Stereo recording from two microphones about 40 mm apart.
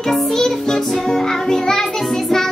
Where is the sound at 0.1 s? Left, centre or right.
Centre.